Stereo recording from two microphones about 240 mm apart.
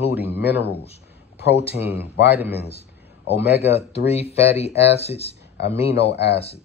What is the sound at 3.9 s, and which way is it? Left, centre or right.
Speech, left.